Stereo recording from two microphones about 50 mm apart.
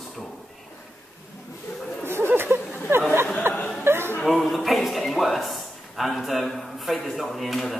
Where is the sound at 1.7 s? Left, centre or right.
Left.